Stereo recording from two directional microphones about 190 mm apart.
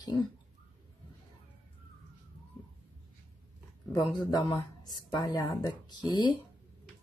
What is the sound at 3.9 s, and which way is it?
Speech, 20° left (ahead or behind).